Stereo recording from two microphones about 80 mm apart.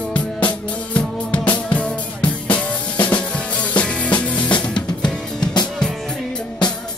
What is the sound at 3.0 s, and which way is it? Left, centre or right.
Drum kit, centre.